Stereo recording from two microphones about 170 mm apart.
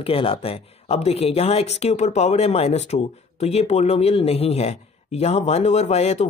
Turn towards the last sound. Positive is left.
turn(degrees=40)  # may be behind; listen again after turning